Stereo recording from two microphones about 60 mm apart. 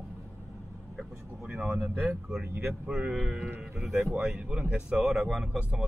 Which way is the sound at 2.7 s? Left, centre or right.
Centre.